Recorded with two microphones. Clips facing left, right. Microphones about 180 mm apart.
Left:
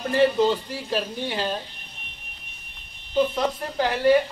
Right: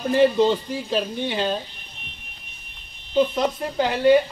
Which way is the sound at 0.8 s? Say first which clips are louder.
Right 2 dB; 5° left (ahead or behind).